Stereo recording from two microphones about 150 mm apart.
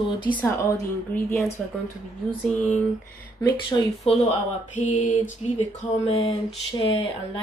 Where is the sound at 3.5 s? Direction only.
30° left (ahead or behind).